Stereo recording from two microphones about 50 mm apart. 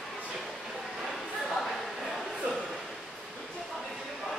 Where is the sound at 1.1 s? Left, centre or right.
Centre.